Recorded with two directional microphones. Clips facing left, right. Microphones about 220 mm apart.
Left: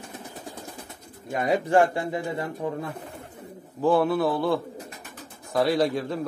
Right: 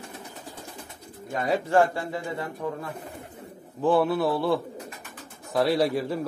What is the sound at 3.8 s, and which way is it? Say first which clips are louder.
A man's voice: left 1 dB; centre (ahead or behind).